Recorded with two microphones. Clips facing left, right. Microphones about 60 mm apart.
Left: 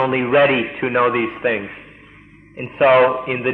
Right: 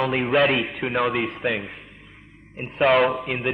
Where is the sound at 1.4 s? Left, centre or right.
Centre.